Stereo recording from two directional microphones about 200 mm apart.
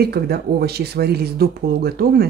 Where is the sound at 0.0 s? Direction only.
50° right (ahead or behind).